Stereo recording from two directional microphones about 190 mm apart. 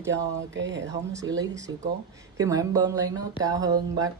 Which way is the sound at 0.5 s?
70° right (ahead or behind).